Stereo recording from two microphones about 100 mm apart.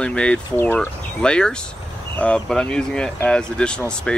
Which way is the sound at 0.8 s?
10° left (ahead or behind).